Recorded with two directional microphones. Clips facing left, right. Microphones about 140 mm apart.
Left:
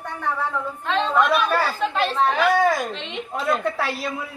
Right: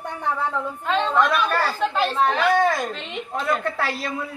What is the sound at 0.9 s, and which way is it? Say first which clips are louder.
A woman's voice: left 1 dB; centre (ahead or behind).